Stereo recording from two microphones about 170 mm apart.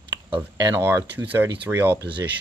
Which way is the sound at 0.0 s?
30° right (ahead or behind).